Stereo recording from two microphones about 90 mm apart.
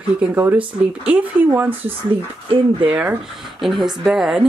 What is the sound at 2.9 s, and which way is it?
Speech, 10° right (ahead or behind).